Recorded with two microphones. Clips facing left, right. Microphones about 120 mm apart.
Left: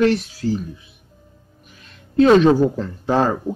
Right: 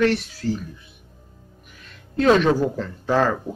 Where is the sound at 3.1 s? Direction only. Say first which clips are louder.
Left 2 dB; 35° left (ahead or behind).